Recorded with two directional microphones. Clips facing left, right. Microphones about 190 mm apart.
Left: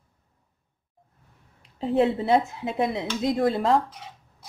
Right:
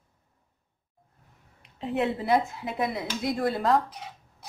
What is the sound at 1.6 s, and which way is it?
Speech, 35° left (ahead or behind).